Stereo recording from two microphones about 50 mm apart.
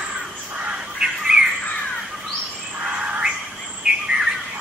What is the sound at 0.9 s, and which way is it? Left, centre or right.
Bird, centre.